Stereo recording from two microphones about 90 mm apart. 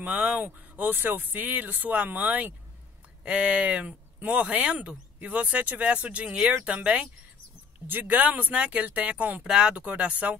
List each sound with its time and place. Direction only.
0.0 s speech: 15° right (ahead or behind)